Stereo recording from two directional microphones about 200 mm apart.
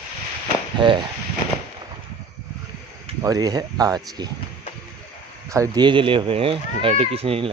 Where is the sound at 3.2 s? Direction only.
15° right (ahead or behind).